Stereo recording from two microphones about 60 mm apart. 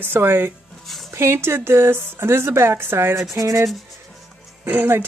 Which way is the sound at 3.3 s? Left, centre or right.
Right.